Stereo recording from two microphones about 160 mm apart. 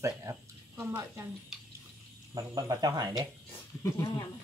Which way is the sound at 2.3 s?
25° right (ahead or behind).